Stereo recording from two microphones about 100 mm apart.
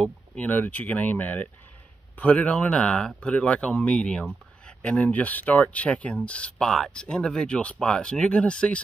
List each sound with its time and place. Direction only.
0.0 s speech: 15° left (ahead or behind)